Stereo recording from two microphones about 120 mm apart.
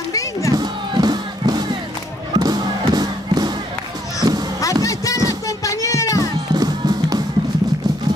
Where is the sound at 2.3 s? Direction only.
35° right (ahead or behind).